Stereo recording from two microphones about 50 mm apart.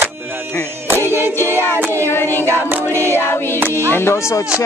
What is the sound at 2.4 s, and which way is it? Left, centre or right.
Music, right.